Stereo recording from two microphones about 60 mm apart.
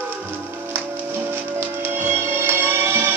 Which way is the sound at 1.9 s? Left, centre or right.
Right.